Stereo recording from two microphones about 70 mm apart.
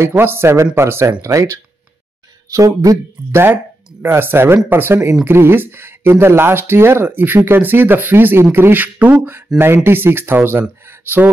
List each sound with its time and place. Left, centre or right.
0.2 s speech: right
2.5 s speech: right
3.3 s speech: right
10.9 s a sound: right